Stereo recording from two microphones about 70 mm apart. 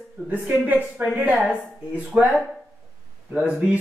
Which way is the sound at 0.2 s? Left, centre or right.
Right.